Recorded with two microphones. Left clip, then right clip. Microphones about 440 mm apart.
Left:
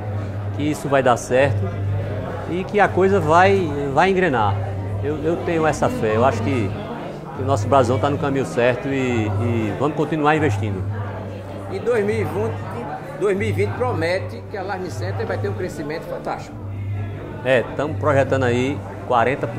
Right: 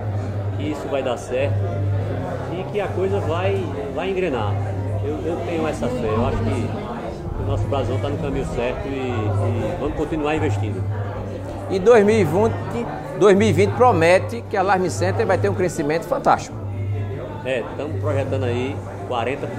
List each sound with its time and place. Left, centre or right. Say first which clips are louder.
0.6 s a man's voice: left 5 dB; left
2.5 s speech: left 9 dB; left
5.7 s a man's voice: left 4 dB; left
11.7 s speech: right 7 dB; right
17.5 s a man's voice: left 6 dB; left